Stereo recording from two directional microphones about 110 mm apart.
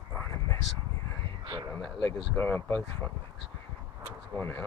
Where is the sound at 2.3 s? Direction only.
15° left (ahead or behind).